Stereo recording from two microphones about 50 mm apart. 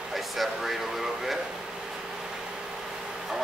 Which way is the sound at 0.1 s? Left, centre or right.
Centre.